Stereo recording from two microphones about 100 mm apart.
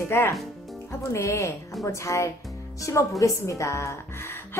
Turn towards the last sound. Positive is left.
turn(degrees=30)  # may be behind; listen again after turning